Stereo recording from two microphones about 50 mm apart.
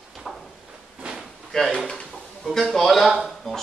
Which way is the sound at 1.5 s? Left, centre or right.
Centre.